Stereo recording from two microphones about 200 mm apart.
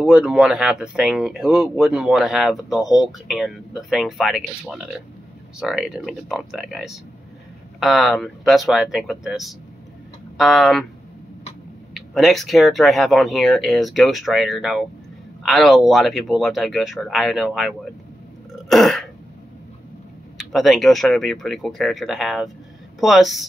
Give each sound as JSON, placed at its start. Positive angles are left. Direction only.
{"t": 0.0, "sound": "speech", "side_deg": -5}
{"t": 11.9, "sound": "speech", "side_deg": 0}
{"t": 18.7, "sound": "throat clearing", "side_deg": 0}
{"t": 20.5, "sound": "speech", "side_deg": 0}